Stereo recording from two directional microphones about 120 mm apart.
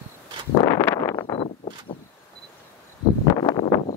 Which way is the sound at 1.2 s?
35° left (ahead or behind).